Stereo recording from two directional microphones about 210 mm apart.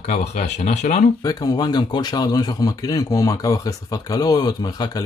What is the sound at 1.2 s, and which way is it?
Speech, 20° left (ahead or behind).